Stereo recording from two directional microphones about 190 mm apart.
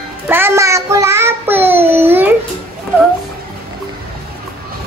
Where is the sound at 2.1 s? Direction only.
10° right (ahead or behind).